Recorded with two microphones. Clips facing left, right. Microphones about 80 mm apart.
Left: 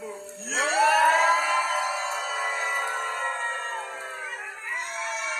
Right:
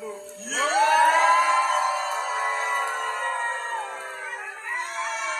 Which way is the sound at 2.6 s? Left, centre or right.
Centre.